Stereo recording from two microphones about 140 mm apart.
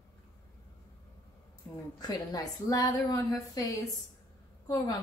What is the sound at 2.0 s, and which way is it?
A woman's voice, 25° left (ahead or behind).